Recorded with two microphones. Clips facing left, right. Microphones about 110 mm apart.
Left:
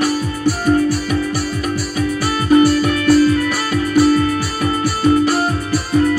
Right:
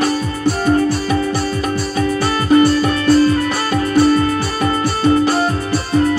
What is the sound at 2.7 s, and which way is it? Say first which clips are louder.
Music: even; 30° right (ahead or behind).